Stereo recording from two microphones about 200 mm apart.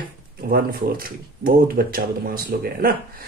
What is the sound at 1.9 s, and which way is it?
Speech, 50° right (ahead or behind).